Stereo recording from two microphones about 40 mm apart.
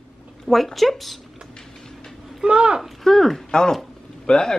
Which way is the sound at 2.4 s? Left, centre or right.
Right.